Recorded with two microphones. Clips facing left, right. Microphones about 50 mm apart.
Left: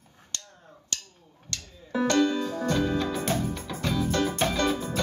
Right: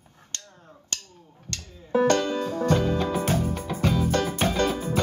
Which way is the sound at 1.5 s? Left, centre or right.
Right.